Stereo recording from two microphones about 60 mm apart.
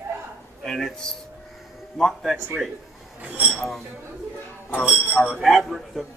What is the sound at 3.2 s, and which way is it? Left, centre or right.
Speech, right.